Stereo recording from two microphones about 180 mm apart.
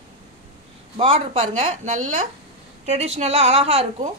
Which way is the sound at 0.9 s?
35° right (ahead or behind).